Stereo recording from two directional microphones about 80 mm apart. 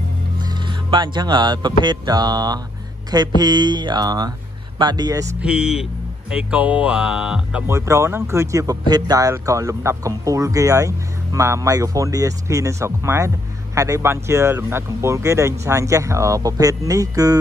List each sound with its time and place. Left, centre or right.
0.4 s speech: right
5.4 s speech: centre
7.6 s speech: right
8.8 s speech: right
9.3 s speech: right